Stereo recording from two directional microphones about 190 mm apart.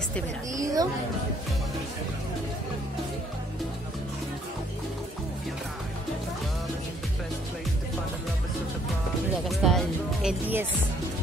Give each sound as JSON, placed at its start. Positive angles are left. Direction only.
{"t": 0.6, "sound": "speech", "side_deg": -20}
{"t": 9.5, "sound": "music", "side_deg": 0}